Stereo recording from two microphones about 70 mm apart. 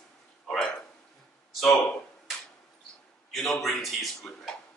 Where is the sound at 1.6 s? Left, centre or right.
Centre.